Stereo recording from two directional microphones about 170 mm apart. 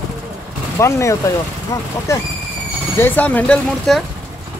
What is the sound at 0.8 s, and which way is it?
Speech, 15° left (ahead or behind).